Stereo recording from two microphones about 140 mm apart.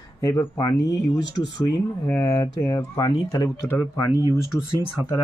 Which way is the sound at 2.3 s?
30° left (ahead or behind).